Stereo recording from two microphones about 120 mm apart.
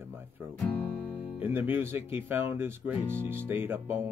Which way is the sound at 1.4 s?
15° right (ahead or behind).